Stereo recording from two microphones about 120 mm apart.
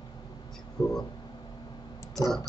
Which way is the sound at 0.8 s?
35° left (ahead or behind).